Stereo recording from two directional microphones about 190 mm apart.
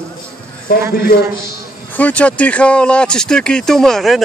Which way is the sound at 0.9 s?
55° left (ahead or behind).